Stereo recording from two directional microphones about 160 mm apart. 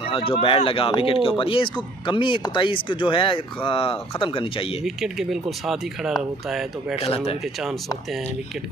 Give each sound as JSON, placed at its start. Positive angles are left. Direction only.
{"t": 0.1, "sound": "speech", "side_deg": 35}
{"t": 4.8, "sound": "speech", "side_deg": 0}
{"t": 7.0, "sound": "speech", "side_deg": 40}